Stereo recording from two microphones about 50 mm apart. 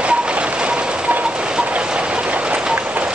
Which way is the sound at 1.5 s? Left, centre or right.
Centre.